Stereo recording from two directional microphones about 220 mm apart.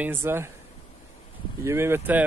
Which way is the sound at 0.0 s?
10° right (ahead or behind).